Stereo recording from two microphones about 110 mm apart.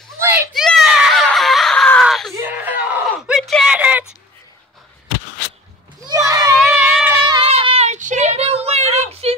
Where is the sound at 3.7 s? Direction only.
10° right (ahead or behind).